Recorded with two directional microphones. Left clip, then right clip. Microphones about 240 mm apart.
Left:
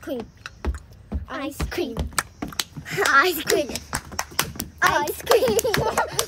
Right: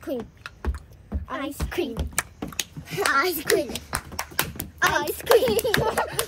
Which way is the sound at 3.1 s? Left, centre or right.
Centre.